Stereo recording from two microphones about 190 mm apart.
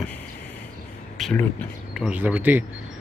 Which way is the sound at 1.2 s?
5° left (ahead or behind).